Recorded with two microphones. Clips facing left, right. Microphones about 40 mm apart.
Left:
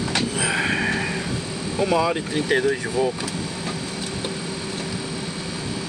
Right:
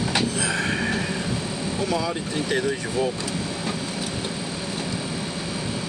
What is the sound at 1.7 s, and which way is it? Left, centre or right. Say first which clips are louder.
Speech: left 6 dB; left.